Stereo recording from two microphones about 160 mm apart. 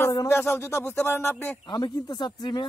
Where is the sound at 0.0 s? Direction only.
20° left (ahead or behind).